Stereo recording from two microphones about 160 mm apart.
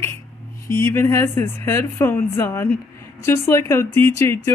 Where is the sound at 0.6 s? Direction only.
15° left (ahead or behind).